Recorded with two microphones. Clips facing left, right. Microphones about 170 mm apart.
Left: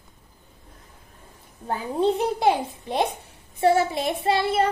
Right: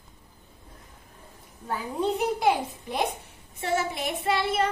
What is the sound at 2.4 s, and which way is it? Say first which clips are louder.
Speech: left 3 dB; 30° left (ahead or behind).